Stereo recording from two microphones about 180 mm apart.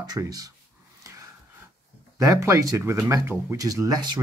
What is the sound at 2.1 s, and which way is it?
Speech, 15° right (ahead or behind).